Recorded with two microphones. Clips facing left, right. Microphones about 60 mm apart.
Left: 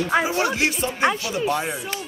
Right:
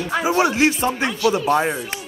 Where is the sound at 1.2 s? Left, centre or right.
Right.